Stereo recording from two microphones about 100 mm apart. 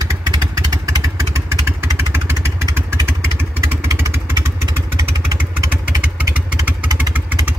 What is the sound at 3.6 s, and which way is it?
Motorcycle, 25° right (ahead or behind).